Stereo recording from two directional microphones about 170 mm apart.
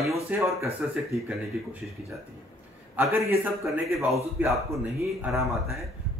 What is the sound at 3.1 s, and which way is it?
A man's voice, 15° right (ahead or behind).